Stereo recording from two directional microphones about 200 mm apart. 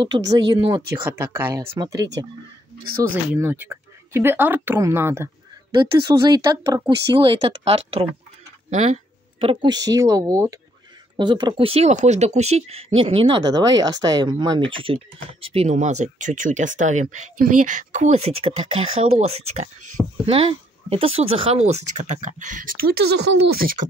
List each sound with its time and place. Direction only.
0.5 s speech: 25° right (ahead or behind)
1.0 s speech: 10° right (ahead or behind); by 23.8 s 50° right (ahead or behind)